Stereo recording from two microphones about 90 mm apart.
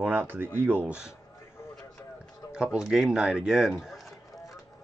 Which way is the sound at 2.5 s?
10° right (ahead or behind).